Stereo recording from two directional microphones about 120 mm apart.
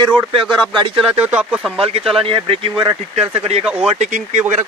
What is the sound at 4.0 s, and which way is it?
Speech, 85° right.